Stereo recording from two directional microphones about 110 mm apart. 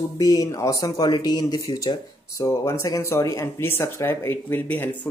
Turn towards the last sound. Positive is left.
turn(degrees=20)  # may be behind; listen again after turning